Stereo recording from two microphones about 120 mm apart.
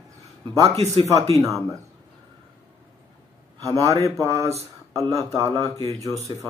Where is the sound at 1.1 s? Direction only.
30° right (ahead or behind).